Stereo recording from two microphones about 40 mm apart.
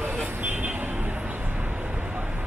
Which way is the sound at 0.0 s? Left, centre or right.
Right.